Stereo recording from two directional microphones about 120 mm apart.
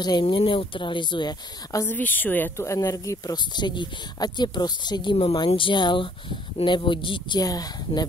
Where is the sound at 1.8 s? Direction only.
15° left (ahead or behind).